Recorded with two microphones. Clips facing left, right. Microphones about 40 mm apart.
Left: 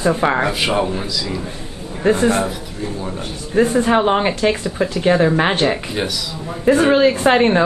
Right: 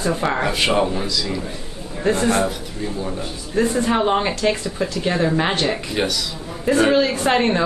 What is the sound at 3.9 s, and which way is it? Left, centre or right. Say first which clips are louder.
Speech: left 3 dB; centre.